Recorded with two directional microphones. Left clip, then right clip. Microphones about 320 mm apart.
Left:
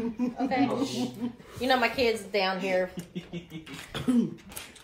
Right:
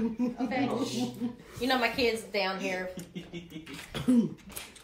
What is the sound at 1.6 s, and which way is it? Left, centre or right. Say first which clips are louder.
A woman's voice: left 3 dB; left.